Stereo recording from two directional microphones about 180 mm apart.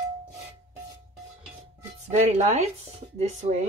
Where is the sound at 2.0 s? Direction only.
40° right (ahead or behind).